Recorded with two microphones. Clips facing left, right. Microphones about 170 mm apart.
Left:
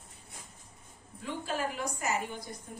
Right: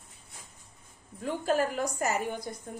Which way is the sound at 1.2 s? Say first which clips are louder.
Right 7 dB; 45° right (ahead or behind).